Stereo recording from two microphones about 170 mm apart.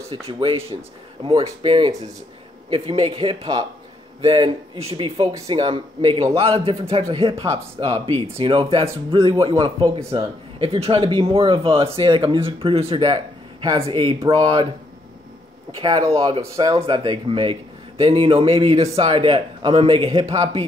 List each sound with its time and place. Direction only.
0.3 s a man's voice: 35° right (ahead or behind)
15.8 s speech: 20° right (ahead or behind)